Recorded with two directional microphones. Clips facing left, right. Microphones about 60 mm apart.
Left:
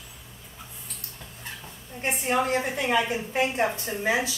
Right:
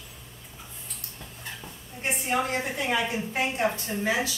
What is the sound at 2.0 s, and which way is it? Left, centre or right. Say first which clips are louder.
A woman's voice: left 2 dB; left.